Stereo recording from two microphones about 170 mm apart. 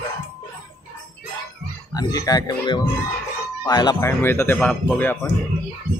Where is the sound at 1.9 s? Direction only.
20° left (ahead or behind).